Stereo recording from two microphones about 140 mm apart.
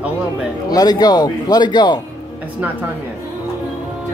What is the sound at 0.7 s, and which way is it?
A man's voice, 25° left (ahead or behind).